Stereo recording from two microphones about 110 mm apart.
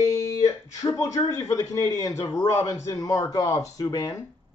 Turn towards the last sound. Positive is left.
turn(degrees=35)  # may be behind; listen again after turning